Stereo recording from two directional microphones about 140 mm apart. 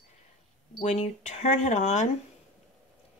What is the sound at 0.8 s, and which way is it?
Speech, 60° left (ahead or behind).